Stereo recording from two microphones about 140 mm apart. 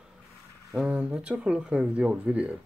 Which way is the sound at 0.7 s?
5° right (ahead or behind).